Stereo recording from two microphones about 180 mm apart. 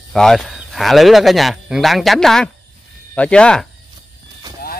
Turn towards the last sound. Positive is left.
turn(degrees=5)  # may be behind; listen again after turning